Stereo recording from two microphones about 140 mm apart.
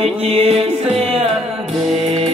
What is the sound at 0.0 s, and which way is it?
Music, 45° right (ahead or behind).